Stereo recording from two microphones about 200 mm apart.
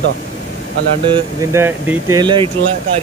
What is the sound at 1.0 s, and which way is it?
Speech, 25° right (ahead or behind).